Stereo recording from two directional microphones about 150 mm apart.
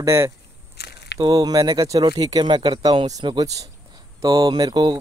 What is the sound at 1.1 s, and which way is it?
Speech, 25° right (ahead or behind).